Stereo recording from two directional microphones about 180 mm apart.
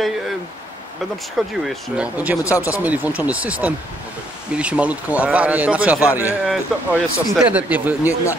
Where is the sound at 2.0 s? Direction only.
10° right (ahead or behind).